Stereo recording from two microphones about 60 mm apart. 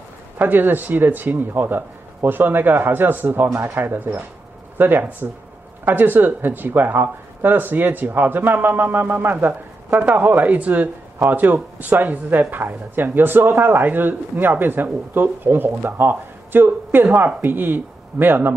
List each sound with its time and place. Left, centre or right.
0.4 s a man's voice: right
3.4 s speech: right
3.8 s a man's voice: right
9.8 s a man's voice: right